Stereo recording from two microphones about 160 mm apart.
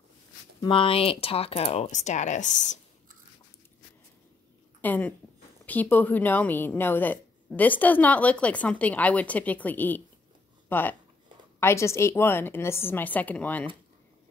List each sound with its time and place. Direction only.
0.6 s speech: 35° left (ahead or behind); by 2.8 s 50° left (ahead or behind)
4.8 s a woman's voice: 10° left (ahead or behind)